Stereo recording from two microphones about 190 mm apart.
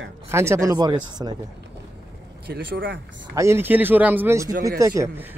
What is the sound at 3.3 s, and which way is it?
Speech, 15° right (ahead or behind).